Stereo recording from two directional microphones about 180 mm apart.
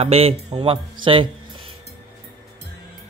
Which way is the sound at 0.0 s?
35° right (ahead or behind).